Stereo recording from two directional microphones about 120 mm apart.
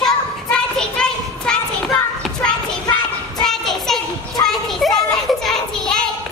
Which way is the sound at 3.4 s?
5° left (ahead or behind).